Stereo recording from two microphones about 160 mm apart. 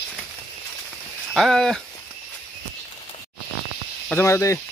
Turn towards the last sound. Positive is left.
turn(degrees=20)  # may be behind; listen again after turning